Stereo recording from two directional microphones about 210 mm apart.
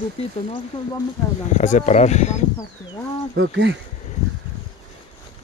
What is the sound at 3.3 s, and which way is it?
Speech, 60° right (ahead or behind).